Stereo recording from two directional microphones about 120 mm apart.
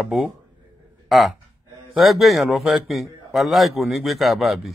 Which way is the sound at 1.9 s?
Centre (ahead or behind).